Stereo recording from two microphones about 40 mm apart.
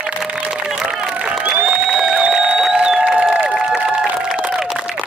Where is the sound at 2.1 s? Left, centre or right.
Centre.